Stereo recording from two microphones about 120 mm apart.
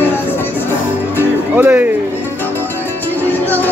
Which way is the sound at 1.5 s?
15° right (ahead or behind).